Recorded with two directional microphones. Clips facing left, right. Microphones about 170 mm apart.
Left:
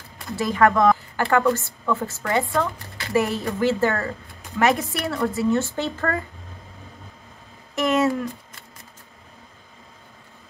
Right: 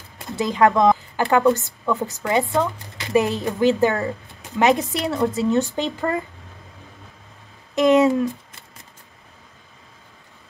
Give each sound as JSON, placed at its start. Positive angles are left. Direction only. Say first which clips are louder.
{"t": 0.2, "sound": "a woman's voice", "louder": "right 1 dB", "side_deg": -20}
{"t": 7.7, "sound": "speech", "louder": "right 5 dB", "side_deg": -20}